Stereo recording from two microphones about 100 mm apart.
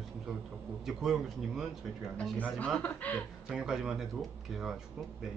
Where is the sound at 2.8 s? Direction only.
15° left (ahead or behind).